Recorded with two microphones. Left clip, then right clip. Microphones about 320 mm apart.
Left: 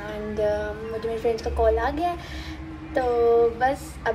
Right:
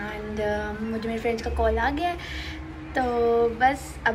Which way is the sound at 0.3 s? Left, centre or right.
Centre.